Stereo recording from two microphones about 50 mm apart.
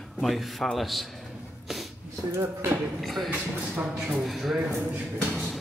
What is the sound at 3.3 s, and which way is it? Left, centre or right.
Speech, right.